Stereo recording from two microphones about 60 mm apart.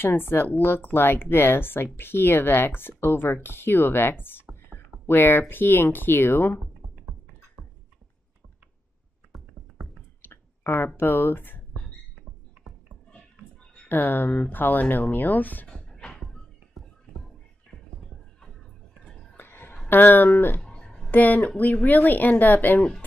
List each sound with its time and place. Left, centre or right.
0.0 s speech: left
9.8 s a sound: centre
10.2 s clicking: left
11.0 s speech: left
13.8 s speech: left
19.3 s a sound: left
19.9 s speech: left
20.6 s a sound: centre
21.1 s speech: left